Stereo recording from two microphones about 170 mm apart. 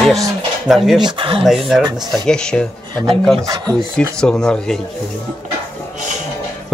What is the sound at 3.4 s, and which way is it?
Speech, 20° right (ahead or behind).